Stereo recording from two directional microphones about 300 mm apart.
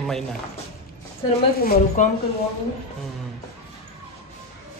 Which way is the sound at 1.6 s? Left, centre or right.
Left.